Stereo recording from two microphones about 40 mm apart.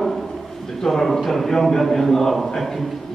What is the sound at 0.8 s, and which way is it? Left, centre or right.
A man's voice, centre.